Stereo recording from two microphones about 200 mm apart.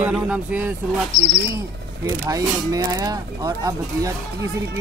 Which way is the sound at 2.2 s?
15° right (ahead or behind).